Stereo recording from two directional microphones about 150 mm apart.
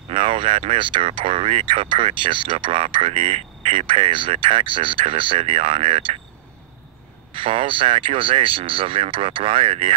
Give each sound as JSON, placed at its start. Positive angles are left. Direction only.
{"t": 0.1, "sound": "speech", "side_deg": -45}
{"t": 7.3, "sound": "speech", "side_deg": -35}